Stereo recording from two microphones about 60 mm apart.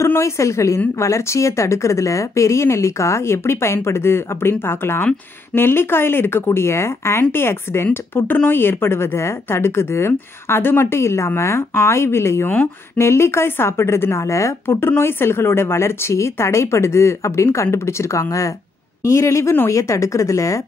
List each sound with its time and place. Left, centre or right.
0.0 s speech: left
14.7 s speech: left